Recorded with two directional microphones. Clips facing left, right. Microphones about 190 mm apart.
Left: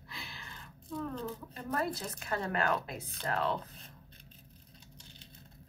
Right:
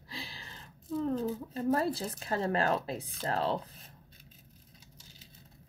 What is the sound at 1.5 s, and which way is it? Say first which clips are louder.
Speech: right 6 dB; 30° right (ahead or behind).